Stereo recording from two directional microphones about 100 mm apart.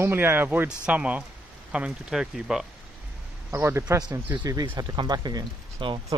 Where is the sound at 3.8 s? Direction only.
40° right (ahead or behind).